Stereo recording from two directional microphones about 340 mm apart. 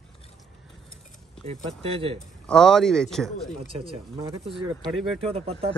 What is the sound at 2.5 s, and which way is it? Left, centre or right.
A man's voice, centre.